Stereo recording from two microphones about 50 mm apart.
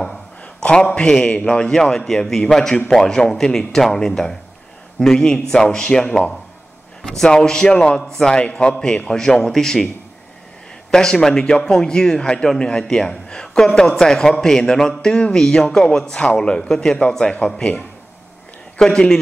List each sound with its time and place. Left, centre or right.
0.0 s a sound: centre
0.9 s a man's voice: centre
8.4 s speech: left; by 9.8 s centre
10.9 s speech: centre
18.8 s speech: centre